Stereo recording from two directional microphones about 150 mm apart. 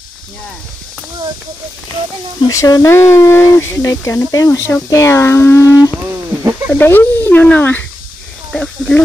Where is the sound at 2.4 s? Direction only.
25° left (ahead or behind).